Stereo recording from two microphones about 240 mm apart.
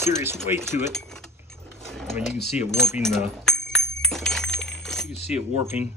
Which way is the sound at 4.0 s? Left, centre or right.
Centre.